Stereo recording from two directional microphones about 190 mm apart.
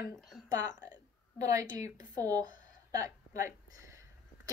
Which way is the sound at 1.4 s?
15° right (ahead or behind).